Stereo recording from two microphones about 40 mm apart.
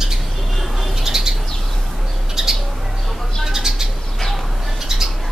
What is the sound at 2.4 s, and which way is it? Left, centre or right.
Bird, centre.